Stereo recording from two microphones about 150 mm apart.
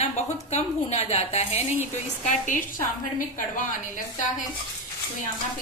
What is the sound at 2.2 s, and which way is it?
A woman's voice, 60° left (ahead or behind).